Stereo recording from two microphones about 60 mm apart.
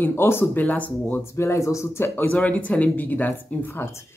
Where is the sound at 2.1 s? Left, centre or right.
Left.